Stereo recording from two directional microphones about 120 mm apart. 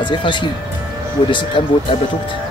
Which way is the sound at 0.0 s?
40° left (ahead or behind).